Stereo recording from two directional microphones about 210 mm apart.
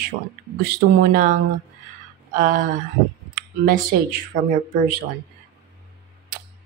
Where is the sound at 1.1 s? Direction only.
40° right (ahead or behind).